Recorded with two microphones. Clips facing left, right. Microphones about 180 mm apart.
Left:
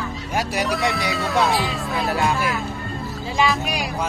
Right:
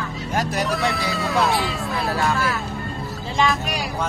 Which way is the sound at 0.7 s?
Centre (ahead or behind).